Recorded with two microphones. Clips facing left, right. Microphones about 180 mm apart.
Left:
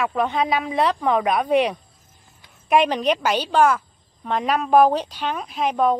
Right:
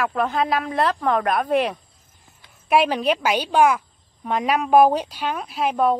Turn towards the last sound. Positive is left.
turn(degrees=-5)  # may be behind; listen again after turning